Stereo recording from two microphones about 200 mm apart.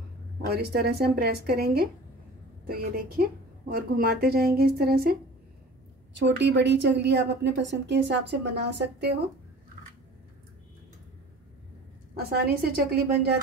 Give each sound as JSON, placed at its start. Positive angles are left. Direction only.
{"t": 0.5, "sound": "a woman's voice", "side_deg": -50}
{"t": 6.1, "sound": "a woman's voice", "side_deg": -60}
{"t": 12.1, "sound": "a woman's voice", "side_deg": -50}